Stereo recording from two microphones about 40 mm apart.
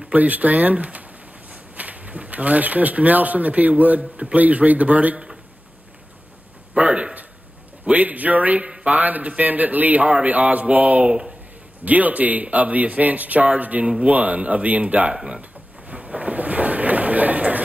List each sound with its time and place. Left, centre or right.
0.1 s speech: right
6.8 s a sound: right
8.8 s speech: right
11.1 s speech: right
11.8 s speech: right
15.1 s speech: centre
15.9 s a sound: right